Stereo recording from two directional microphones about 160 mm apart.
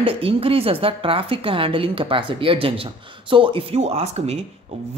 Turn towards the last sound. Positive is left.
turn(degrees=-40)  # may be behind; listen again after turning